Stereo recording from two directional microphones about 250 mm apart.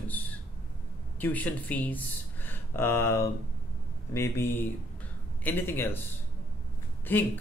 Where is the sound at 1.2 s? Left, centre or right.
Centre.